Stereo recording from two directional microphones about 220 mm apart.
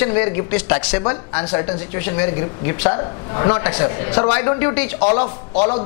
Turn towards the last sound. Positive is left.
turn(degrees=25)  # may be behind; listen again after turning